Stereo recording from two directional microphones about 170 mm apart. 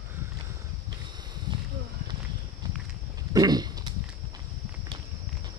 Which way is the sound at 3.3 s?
25° right (ahead or behind).